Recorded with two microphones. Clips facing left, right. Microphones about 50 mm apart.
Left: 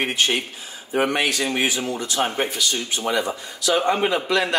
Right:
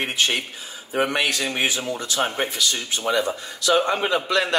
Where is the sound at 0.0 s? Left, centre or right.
Centre.